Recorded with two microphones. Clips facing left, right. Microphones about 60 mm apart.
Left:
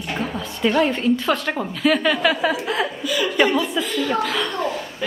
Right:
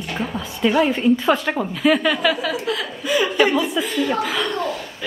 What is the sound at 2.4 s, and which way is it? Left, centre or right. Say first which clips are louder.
Speech: left 2 dB; left.